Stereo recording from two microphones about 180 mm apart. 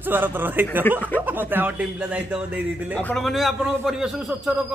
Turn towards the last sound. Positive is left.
turn(degrees=-5)  # may be behind; listen again after turning